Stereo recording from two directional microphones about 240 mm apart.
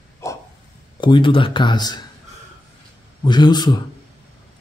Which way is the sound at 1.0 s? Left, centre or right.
Centre.